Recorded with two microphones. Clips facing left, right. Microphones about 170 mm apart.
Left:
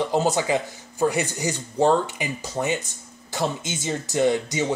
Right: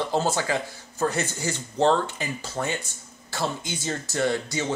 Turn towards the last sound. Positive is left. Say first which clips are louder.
# left 4 dB
turn(degrees=15)  # may be behind; listen again after turning